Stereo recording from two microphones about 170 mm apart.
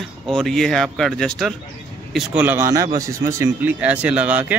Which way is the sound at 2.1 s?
10° right (ahead or behind).